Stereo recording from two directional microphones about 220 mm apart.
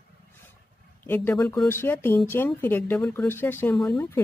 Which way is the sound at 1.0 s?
10° left (ahead or behind).